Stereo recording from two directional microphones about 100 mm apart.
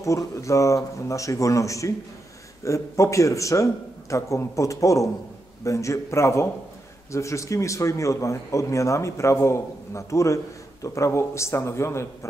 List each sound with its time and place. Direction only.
0.0 s a man's voice: 30° left (ahead or behind)